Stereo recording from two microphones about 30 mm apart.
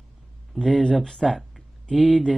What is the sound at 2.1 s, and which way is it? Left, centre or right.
Speech, left.